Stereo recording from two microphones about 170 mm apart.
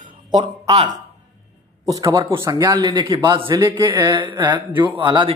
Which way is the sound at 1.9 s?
20° right (ahead or behind).